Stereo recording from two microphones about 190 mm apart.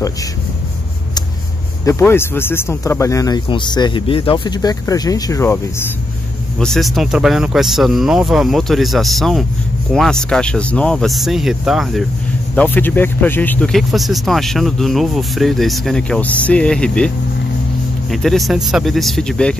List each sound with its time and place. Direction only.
1.9 s speech: 15° left (ahead or behind)
6.6 s speech: centre (ahead or behind)
12.5 s speech: 10° left (ahead or behind)
18.1 s speech: centre (ahead or behind)